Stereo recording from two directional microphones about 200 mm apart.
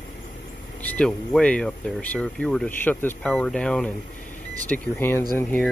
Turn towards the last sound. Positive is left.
turn(degrees=10)  # may be behind; listen again after turning